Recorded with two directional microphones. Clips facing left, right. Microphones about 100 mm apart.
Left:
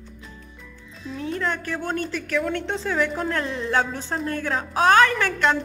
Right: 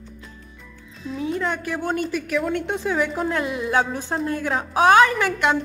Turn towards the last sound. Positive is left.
turn(degrees=-15)  # may be behind; listen again after turning